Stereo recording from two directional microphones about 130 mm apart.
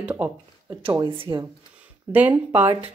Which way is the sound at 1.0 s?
40° right (ahead or behind).